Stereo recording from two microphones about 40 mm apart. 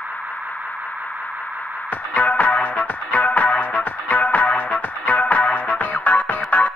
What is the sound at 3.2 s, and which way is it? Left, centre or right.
Music, left.